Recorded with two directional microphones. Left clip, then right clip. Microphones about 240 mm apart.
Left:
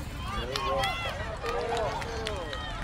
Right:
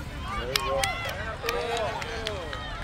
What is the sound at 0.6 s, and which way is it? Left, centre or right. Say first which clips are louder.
Run: right 1 dB; left.